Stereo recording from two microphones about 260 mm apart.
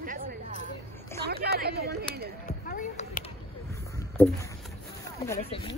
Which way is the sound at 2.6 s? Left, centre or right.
Left.